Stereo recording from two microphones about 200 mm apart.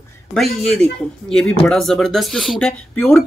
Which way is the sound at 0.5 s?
Centre (ahead or behind).